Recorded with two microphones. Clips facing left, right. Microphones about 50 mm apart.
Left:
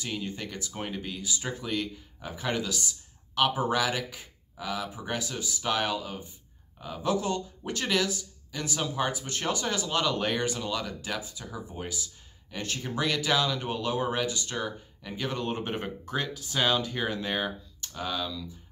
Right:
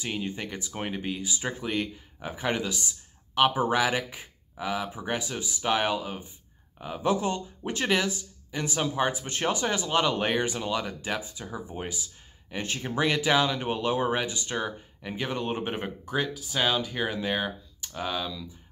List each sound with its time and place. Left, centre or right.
0.0 s speech: right